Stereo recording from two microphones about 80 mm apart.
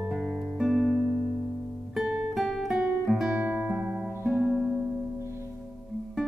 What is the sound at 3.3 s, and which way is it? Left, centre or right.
Music, right.